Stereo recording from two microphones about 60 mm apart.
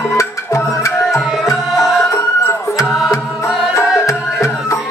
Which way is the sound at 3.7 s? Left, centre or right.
Left.